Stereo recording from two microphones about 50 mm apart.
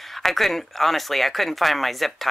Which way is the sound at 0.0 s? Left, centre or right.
Centre.